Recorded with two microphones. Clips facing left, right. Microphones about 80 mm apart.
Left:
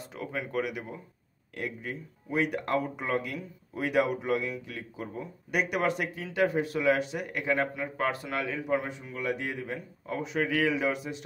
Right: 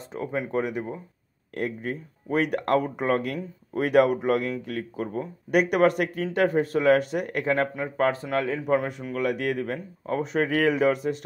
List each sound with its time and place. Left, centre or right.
0.1 s speech: right
1.5 s speech: right
8.6 s speech: right
10.0 s speech: right